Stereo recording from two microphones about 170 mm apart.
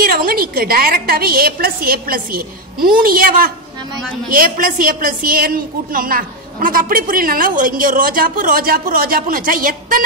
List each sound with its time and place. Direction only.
0.0 s a woman's voice: 60° right (ahead or behind)